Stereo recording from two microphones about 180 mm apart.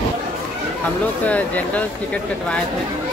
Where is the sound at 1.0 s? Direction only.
10° left (ahead or behind).